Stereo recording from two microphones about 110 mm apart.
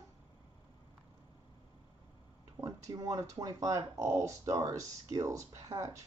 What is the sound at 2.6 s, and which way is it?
Speech, 30° right (ahead or behind).